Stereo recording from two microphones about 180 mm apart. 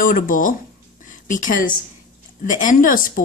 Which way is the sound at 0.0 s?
50° left (ahead or behind).